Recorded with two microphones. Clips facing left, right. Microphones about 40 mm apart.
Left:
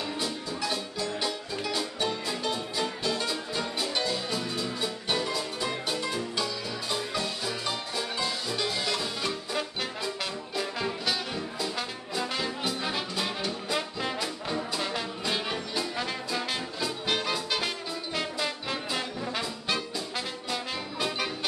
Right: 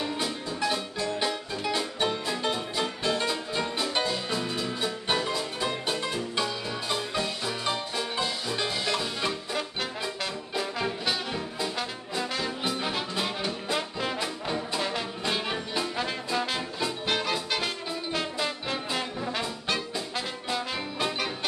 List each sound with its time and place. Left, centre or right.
0.0 s music: centre
10.6 s brass instrument: centre
16.0 s music: centre